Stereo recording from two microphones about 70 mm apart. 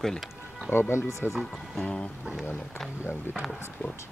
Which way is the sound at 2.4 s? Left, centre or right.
Left.